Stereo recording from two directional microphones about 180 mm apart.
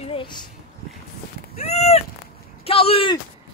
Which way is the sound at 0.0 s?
30° left (ahead or behind).